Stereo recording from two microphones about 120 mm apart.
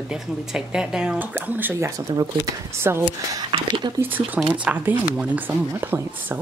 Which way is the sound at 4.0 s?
15° right (ahead or behind).